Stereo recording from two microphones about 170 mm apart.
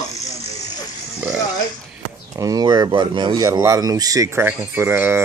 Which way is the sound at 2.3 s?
20° right (ahead or behind).